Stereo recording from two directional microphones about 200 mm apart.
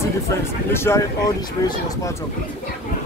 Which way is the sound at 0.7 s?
10° left (ahead or behind).